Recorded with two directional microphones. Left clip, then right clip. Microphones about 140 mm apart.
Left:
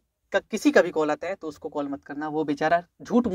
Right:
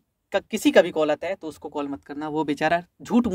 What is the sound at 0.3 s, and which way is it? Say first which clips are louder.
Speech: right 1 dB; 50° right (ahead or behind).